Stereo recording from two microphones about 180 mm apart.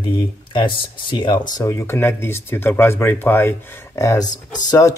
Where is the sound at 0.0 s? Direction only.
25° left (ahead or behind).